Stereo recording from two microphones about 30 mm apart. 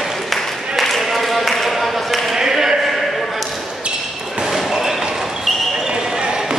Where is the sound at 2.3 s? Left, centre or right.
Centre.